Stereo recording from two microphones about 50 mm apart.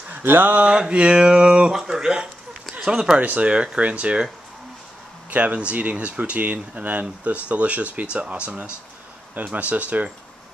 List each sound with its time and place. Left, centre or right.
0.1 s a sound: right
0.7 s speech: centre
3.2 s speech: right
3.4 s speech: right
5.3 s speech: right